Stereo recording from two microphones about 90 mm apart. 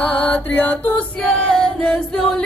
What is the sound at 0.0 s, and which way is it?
Mantra, 15° left (ahead or behind).